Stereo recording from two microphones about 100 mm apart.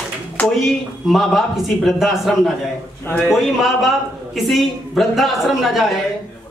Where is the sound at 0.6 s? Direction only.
Centre (ahead or behind).